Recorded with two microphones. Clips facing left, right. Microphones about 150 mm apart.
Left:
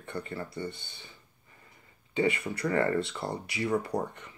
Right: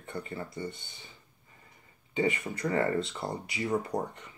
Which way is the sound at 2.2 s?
20° right (ahead or behind).